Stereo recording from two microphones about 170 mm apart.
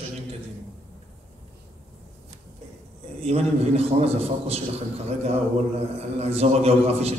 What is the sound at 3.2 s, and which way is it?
A man's voice, 35° right (ahead or behind).